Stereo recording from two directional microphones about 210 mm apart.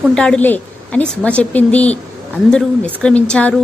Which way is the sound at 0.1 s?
5° left (ahead or behind).